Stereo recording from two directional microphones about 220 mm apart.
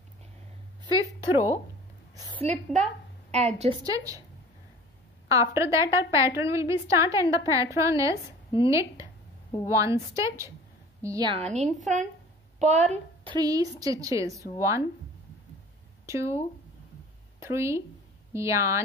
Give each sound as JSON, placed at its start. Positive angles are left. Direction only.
{"t": 2.4, "sound": "a woman's voice", "side_deg": -30}
{"t": 3.8, "sound": "a woman's voice", "side_deg": -15}
{"t": 5.3, "sound": "a woman's voice", "side_deg": -15}
{"t": 11.3, "sound": "a woman's voice", "side_deg": -30}
{"t": 16.1, "sound": "a woman's voice", "side_deg": -15}
{"t": 17.4, "sound": "a woman's voice", "side_deg": -10}